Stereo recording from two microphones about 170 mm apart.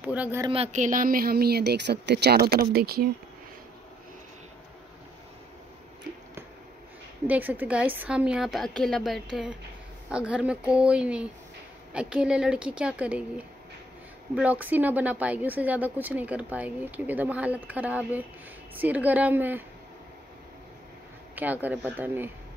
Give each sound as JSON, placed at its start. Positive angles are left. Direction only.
{"t": 0.0, "sound": "a woman's voice", "side_deg": -10}
{"t": 0.5, "sound": "speech", "side_deg": -35}
{"t": 0.8, "sound": "speech", "side_deg": -55}
{"t": 7.2, "sound": "a woman's voice", "side_deg": -10}
{"t": 14.3, "sound": "a woman's voice", "side_deg": -10}
{"t": 21.4, "sound": "a woman's voice", "side_deg": -10}